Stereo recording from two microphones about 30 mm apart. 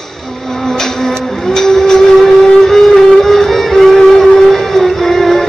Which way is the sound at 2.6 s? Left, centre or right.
Centre.